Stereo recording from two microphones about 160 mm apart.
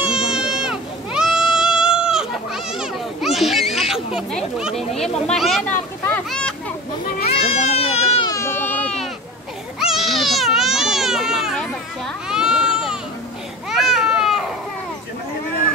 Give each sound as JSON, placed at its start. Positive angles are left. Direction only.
{"t": 0.3, "sound": "goat", "side_deg": -5}
{"t": 6.0, "sound": "a sound", "side_deg": 10}
{"t": 7.2, "sound": "goat", "side_deg": 40}
{"t": 8.3, "sound": "baby cry", "side_deg": 15}
{"t": 9.8, "sound": "baby cry", "side_deg": 0}
{"t": 13.7, "sound": "a sound", "side_deg": 0}